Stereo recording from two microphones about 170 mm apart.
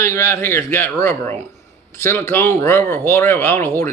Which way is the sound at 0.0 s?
15° left (ahead or behind).